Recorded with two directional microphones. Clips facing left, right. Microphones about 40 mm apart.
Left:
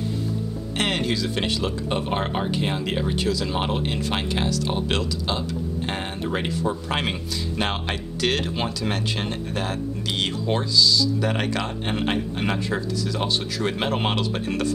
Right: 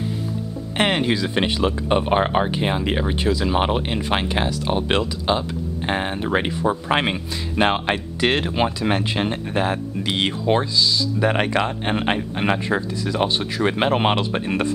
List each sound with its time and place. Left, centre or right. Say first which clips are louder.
0.7 s speech: right 5 dB; right